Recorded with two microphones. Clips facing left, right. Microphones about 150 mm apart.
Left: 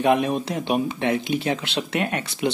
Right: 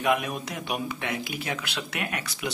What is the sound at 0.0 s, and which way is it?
Speech, 30° left (ahead or behind).